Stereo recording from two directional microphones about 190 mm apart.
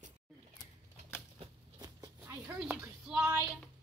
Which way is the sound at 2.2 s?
10° right (ahead or behind).